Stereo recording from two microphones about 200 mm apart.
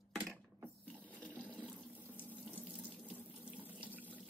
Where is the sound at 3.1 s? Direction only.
10° right (ahead or behind).